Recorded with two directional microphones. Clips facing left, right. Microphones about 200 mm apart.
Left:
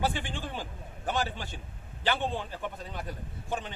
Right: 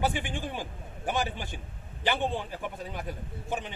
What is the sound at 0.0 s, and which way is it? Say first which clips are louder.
Speech: right 2 dB; 15° right (ahead or behind).